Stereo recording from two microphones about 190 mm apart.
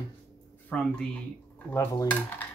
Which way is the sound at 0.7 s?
5° left (ahead or behind).